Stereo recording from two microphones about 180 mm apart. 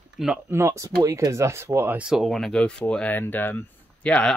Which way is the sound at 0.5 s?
15° right (ahead or behind).